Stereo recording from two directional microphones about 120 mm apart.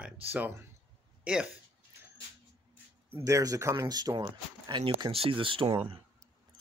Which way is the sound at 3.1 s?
25° right (ahead or behind).